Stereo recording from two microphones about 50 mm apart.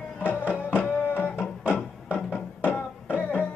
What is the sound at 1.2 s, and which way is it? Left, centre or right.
Music, left.